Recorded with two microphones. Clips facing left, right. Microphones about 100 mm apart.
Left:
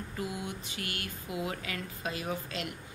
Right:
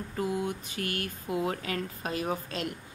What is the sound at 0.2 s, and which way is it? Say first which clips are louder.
A woman's voice: right 7 dB; 45° right (ahead or behind).